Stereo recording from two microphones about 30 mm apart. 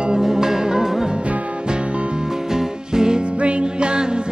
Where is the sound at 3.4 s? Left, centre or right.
Right.